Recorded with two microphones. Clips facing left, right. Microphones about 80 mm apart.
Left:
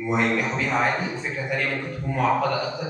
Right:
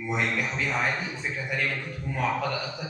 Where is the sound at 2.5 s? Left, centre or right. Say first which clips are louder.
Left 6 dB; left.